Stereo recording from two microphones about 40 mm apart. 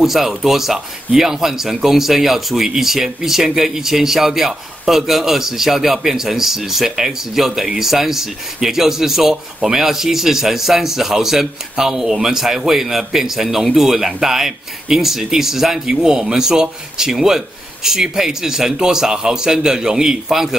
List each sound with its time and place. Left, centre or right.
0.0 s speech: centre